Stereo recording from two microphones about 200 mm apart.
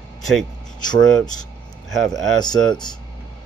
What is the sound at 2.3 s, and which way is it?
Speech, 20° left (ahead or behind).